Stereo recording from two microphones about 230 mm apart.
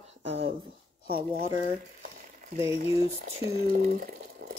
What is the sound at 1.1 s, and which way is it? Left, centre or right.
Speech, right.